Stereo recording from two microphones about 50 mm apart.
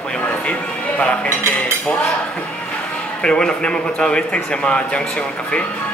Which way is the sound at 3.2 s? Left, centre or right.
Centre.